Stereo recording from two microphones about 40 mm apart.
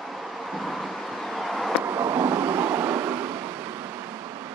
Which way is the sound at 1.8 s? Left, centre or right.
Right.